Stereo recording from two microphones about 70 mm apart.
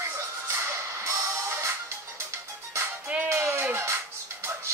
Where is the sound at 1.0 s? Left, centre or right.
Right.